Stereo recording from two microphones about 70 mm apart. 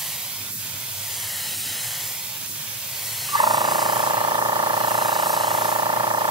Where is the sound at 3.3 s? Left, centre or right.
Right.